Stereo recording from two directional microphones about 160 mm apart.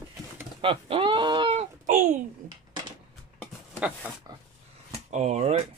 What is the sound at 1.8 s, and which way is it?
Speech, 50° right (ahead or behind).